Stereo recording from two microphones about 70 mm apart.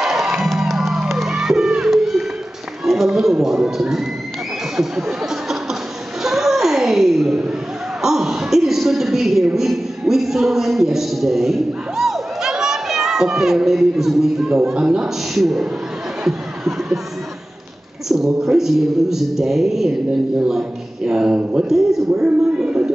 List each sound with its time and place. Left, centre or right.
0.0 s music: centre
2.8 s speech: centre
4.7 s a sound: centre
8.0 s a woman's voice: centre
16.3 s a sound: centre
18.0 s a man's voice: centre
21.6 s a man's voice: centre